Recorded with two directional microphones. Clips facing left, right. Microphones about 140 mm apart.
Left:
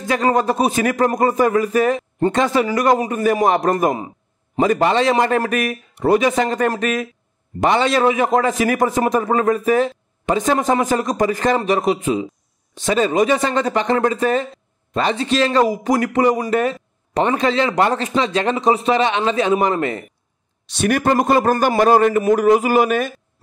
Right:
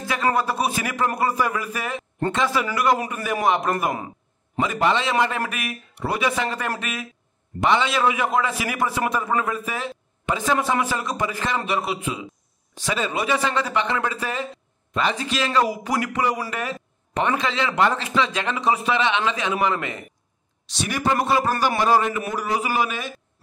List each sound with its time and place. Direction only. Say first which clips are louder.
0.1 s a man's voice: left 6 dB; 35° left (ahead or behind)
20.7 s a man's voice: left 7 dB; 55° left (ahead or behind)